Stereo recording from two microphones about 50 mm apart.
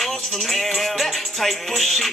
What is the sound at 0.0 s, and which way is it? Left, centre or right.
Music, centre.